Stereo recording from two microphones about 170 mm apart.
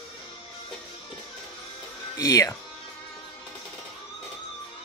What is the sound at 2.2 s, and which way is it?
Speech, 20° left (ahead or behind).